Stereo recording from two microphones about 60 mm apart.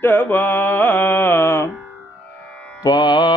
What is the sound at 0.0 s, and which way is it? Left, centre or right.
Mantra, left.